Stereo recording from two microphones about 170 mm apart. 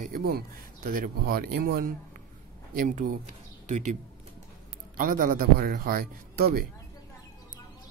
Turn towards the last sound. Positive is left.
turn(degrees=-60)  # may be behind; listen again after turning